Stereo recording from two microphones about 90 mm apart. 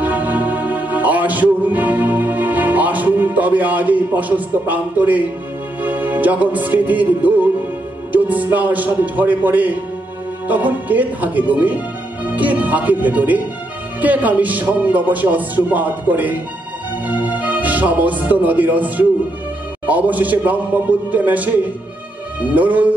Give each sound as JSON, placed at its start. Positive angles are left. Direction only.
{"t": 0.0, "sound": "music", "side_deg": -20}
{"t": 8.1, "sound": "a man's voice", "side_deg": -15}
{"t": 22.5, "sound": "speech", "side_deg": -15}